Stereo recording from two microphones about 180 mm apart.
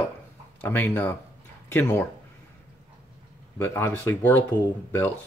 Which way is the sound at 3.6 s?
10° left (ahead or behind).